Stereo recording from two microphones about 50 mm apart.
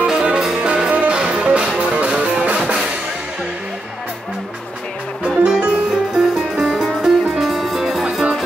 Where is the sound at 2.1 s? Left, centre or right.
Centre.